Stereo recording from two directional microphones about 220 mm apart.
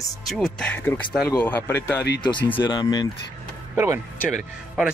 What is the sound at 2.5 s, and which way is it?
Speech, 20° left (ahead or behind).